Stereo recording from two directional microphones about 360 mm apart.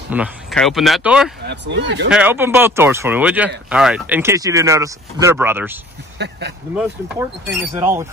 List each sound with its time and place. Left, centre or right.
0.1 s speech: centre
1.4 s speech: right
2.0 s speech: centre
6.1 s speech: right
6.8 s speech: centre